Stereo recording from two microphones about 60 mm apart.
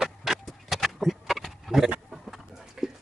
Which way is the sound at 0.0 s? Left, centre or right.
Centre.